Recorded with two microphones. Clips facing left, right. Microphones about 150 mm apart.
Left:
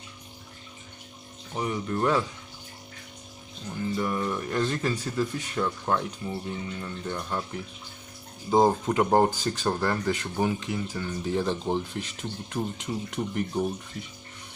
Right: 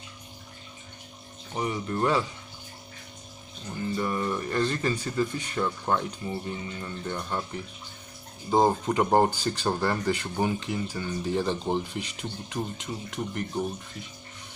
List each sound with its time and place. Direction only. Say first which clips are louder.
1.5 s speech: even; 5° right (ahead or behind)
3.7 s speech: even; centre (ahead or behind)